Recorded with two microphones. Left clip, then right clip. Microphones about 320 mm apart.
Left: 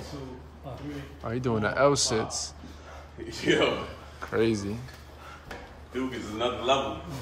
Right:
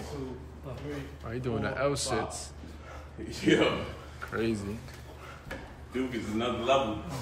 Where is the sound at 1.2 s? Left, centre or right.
Centre.